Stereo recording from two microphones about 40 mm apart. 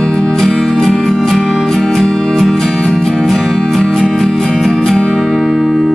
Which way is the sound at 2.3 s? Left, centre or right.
Centre.